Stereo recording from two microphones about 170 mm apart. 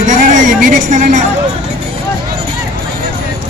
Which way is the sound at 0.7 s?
50° right (ahead or behind).